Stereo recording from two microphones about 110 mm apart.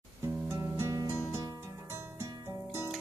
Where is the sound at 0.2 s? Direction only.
25° right (ahead or behind).